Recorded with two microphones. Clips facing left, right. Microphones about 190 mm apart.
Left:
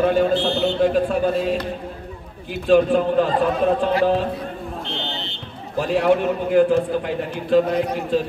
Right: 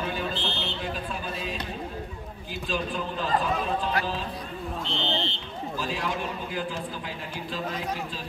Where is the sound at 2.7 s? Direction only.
65° left (ahead or behind).